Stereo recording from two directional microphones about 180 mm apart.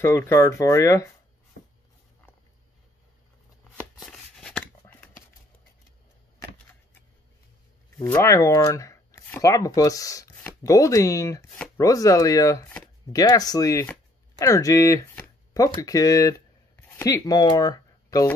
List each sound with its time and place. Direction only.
0.0 s speech: 15° left (ahead or behind)
4.0 s a sound: 5° left (ahead or behind)
8.0 s speech: 15° left (ahead or behind)
11.5 s chopping: 5° left (ahead or behind)
11.8 s speech: 20° left (ahead or behind)